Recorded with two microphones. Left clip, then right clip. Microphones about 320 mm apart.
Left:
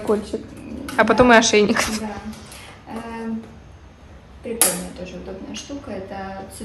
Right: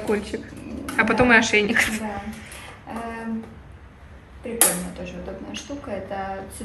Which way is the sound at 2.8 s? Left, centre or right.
Centre.